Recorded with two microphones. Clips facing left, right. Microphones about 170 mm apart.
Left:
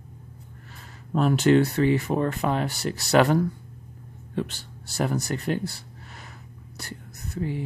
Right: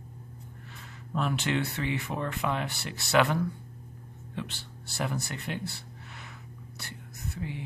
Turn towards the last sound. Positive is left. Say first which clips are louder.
# left 7 dB
turn(degrees=40)  # may be behind; listen again after turning